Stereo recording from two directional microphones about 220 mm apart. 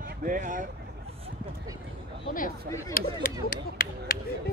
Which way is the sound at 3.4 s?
40° left (ahead or behind).